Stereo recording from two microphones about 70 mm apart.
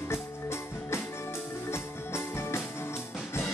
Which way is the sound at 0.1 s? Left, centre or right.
Left.